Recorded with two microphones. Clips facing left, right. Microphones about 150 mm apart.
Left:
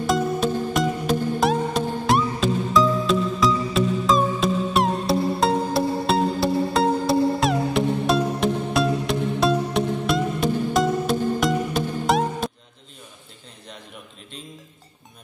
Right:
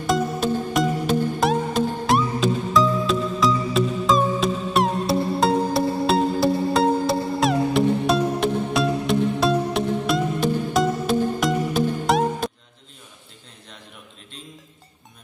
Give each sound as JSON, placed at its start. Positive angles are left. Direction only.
{"t": 0.0, "sound": "music", "side_deg": 0}